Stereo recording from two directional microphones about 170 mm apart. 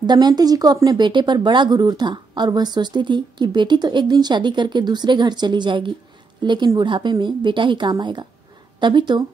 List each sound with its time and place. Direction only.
0.0 s speech: 25° right (ahead or behind)